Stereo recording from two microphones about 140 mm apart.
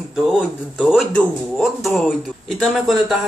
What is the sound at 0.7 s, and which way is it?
Speech, 5° left (ahead or behind).